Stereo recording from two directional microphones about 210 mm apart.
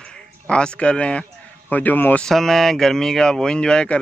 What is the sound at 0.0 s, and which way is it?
Speech, 5° left (ahead or behind).